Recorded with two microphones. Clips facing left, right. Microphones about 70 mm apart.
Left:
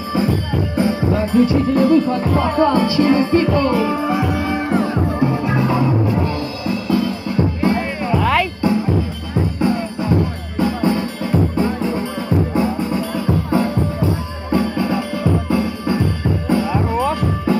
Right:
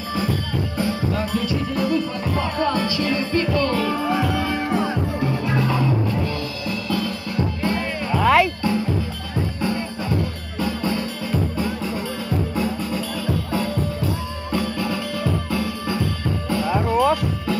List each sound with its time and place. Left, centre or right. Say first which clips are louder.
0.1 s music: left 5 dB; left
8.2 s music: right 2 dB; centre
9.6 s music: left 7 dB; left